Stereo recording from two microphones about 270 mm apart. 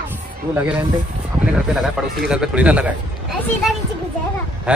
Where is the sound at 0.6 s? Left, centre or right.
Centre.